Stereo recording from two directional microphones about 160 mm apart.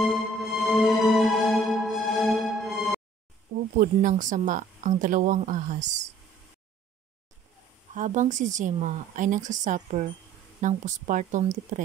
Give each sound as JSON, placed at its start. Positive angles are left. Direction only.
{"t": 0.0, "sound": "music", "side_deg": 0}
{"t": 3.7, "sound": "speech", "side_deg": -55}
{"t": 7.9, "sound": "speech", "side_deg": -50}